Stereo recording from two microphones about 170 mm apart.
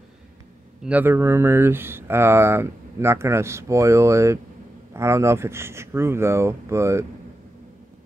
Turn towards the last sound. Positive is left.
turn(degrees=-15)  # may be behind; listen again after turning